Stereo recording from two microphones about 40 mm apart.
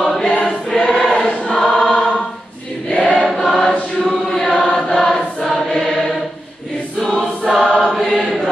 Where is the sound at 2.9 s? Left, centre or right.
Left.